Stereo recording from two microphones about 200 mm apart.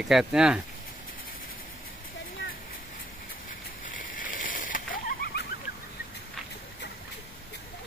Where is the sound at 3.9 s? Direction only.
45° left (ahead or behind).